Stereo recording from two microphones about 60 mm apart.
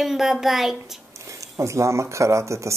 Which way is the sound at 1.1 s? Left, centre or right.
Right.